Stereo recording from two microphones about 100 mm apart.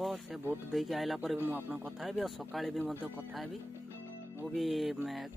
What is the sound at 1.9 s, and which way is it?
Speech, centre (ahead or behind).